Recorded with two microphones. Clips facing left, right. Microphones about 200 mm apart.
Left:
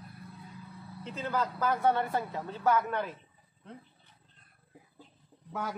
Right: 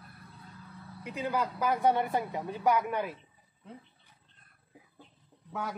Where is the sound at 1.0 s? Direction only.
10° right (ahead or behind).